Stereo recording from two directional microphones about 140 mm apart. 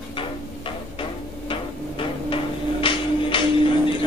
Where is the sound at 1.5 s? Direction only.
40° left (ahead or behind).